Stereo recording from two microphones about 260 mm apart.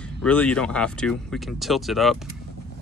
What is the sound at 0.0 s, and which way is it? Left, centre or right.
Speech, centre.